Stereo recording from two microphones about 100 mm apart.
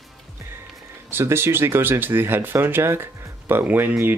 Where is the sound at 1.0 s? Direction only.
25° right (ahead or behind).